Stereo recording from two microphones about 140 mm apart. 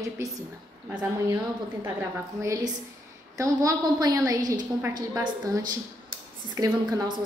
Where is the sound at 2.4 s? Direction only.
25° right (ahead or behind).